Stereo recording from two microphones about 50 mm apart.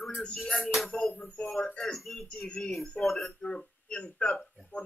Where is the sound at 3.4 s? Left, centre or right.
Centre.